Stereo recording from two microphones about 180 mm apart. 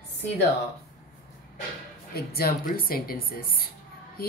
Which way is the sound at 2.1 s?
60° left (ahead or behind).